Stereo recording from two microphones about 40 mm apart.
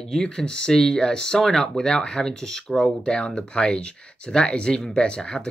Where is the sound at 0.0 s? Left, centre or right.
Centre.